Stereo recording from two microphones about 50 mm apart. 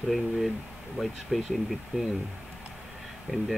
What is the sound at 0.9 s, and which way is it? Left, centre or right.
Speech, centre.